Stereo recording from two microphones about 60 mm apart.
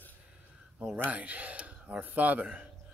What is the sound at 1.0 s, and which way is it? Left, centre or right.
Speech, right.